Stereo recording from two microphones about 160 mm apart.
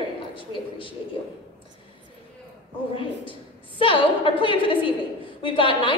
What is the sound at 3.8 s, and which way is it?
A woman's voice, 35° left (ahead or behind).